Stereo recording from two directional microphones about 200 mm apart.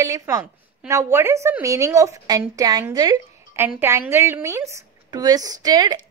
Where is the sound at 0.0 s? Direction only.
15° right (ahead or behind).